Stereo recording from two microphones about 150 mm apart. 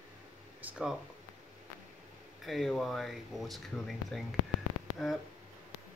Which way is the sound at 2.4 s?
Centre (ahead or behind).